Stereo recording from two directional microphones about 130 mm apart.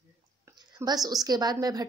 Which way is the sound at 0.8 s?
30° right (ahead or behind).